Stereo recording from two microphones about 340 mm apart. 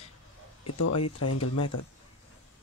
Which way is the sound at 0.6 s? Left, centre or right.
Left.